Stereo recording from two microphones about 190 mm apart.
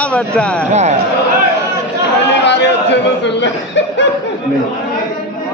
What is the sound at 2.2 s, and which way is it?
Speech, 65° left (ahead or behind).